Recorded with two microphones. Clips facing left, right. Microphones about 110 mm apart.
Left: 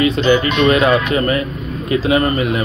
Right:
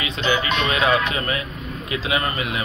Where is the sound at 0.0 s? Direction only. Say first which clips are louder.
Left 9 dB; 50° left (ahead or behind).